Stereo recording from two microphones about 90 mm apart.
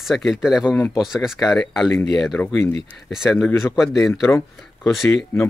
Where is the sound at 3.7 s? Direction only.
Centre (ahead or behind).